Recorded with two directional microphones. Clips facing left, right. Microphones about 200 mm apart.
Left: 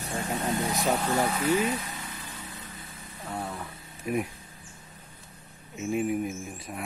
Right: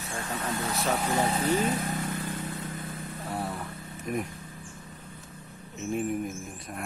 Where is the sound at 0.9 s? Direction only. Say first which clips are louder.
Left 1 dB; 10° right (ahead or behind).